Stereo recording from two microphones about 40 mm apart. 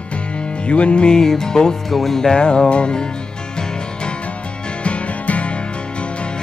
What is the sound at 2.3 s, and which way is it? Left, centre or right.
Music, left.